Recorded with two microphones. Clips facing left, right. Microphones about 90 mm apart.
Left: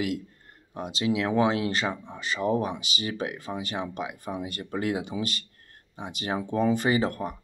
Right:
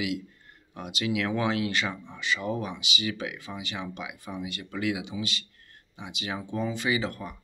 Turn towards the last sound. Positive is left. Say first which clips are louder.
# left 4 dB
turn(degrees=45)  # may be behind; listen again after turning